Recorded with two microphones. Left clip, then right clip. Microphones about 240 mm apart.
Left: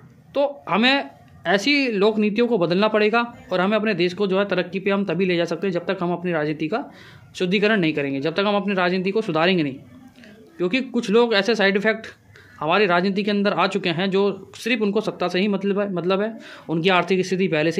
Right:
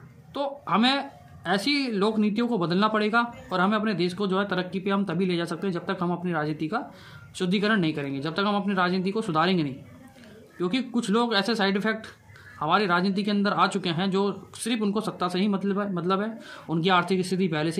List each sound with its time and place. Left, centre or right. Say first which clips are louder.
0.3 s speech: left 6 dB; centre